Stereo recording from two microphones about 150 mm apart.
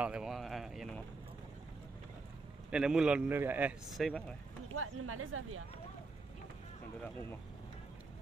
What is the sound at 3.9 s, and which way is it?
Speech, 5° left (ahead or behind).